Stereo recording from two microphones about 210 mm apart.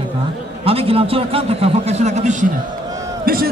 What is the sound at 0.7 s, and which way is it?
A man's voice, 25° right (ahead or behind).